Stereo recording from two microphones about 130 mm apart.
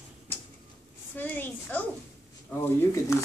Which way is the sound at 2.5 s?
15° left (ahead or behind).